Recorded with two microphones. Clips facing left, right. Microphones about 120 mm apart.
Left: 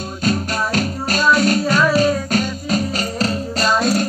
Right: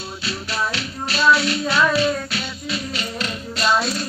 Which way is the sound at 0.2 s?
45° left (ahead or behind).